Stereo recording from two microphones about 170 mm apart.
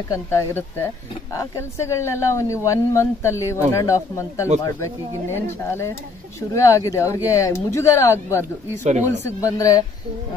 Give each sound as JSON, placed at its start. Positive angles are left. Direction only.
{"t": 0.1, "sound": "speech", "side_deg": 15}